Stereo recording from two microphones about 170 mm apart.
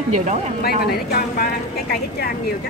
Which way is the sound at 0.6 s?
65° left (ahead or behind).